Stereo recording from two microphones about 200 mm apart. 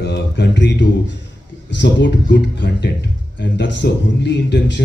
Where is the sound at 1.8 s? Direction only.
60° left (ahead or behind).